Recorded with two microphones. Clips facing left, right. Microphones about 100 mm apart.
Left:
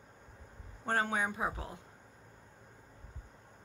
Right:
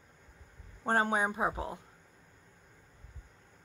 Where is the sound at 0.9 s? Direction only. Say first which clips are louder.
Right 4 dB; 25° right (ahead or behind).